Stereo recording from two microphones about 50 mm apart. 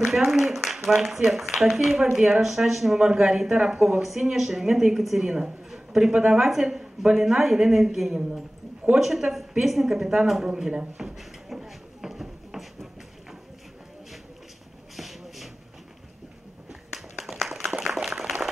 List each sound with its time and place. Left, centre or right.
0.1 s speech: centre
3.8 s speech: centre
10.5 s speech: centre
11.1 s a sound: centre
15.0 s shuffle: centre
16.9 s a sound: centre